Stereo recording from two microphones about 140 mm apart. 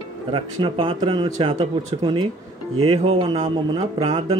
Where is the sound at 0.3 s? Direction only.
35° right (ahead or behind).